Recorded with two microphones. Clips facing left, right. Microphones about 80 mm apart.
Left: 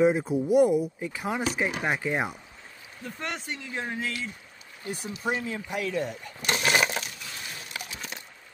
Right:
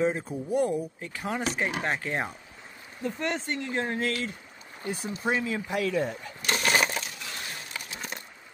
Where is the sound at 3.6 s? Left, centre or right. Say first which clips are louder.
Right 4 dB; right.